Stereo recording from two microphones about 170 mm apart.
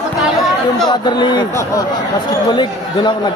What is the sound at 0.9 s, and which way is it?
Speech, 25° left (ahead or behind).